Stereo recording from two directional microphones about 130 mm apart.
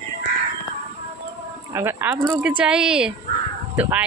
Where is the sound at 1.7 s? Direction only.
15° right (ahead or behind).